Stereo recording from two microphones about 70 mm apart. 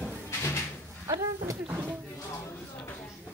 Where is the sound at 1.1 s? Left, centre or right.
Right.